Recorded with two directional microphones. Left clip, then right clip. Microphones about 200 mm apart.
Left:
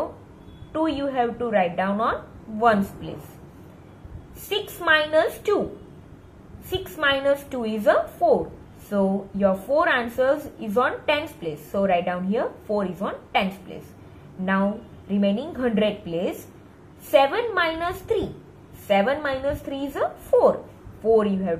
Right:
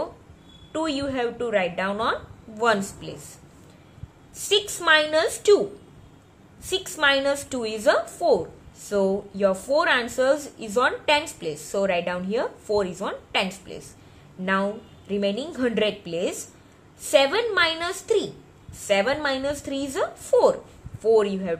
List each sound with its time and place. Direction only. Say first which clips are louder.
0.7 s a woman's voice: left 3 dB; 50° right (ahead or behind)
4.5 s a woman's voice: right 2 dB; 50° right (ahead or behind)
6.7 s a woman's voice: right 2 dB; 55° right (ahead or behind)